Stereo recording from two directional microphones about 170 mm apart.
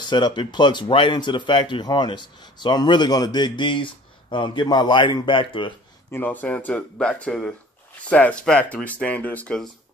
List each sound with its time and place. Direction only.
0.0 s speech: 25° left (ahead or behind)
6.1 s speech: 10° left (ahead or behind)